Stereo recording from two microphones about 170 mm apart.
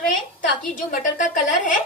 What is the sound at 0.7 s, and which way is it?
A woman's voice, 50° left (ahead or behind).